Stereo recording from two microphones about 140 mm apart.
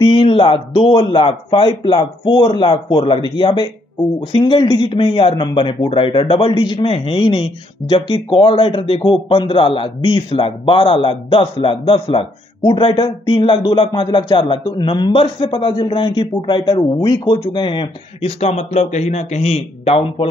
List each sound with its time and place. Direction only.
0.0 s a man's voice: 40° left (ahead or behind)